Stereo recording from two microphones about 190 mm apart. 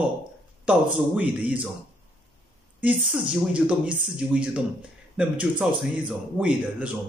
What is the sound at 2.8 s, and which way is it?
A man's voice, 5° right (ahead or behind).